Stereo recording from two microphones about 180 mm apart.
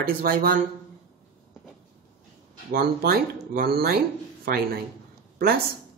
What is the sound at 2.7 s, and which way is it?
Speech, 55° right (ahead or behind).